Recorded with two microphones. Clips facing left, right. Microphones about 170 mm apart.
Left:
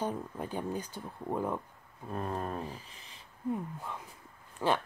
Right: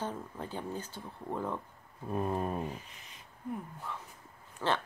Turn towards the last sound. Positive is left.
turn(degrees=10)  # may be behind; listen again after turning